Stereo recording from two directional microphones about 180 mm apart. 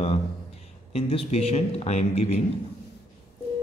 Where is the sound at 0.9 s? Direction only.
35° left (ahead or behind).